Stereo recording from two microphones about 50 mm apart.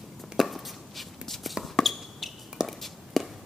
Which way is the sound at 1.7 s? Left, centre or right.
Centre.